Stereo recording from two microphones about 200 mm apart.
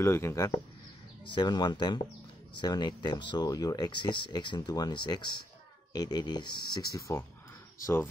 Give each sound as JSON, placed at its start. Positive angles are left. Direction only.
{"t": 0.0, "sound": "speech", "side_deg": 15}